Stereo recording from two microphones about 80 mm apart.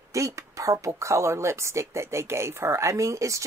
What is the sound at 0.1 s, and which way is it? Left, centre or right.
A woman's voice, right.